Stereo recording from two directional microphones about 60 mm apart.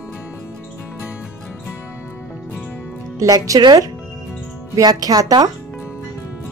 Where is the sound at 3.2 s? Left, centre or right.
Right.